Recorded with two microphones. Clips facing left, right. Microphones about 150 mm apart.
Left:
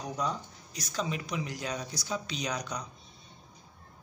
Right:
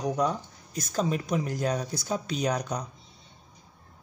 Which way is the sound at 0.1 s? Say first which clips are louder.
Right 6 dB; 55° right (ahead or behind).